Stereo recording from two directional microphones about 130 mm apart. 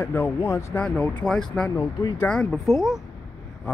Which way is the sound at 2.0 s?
25° left (ahead or behind).